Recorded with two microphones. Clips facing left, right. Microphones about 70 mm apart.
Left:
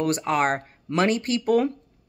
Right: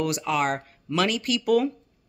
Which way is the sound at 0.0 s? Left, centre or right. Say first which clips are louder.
Left 2 dB; left.